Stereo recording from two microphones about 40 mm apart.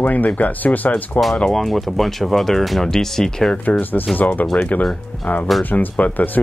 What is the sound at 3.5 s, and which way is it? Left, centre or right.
Speech, left.